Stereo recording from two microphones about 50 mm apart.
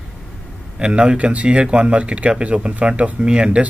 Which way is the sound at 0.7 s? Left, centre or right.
Centre.